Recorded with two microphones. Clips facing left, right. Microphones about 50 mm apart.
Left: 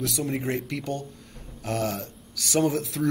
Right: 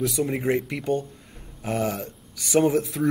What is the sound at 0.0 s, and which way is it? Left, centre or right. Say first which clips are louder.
Speech: right 4 dB; centre.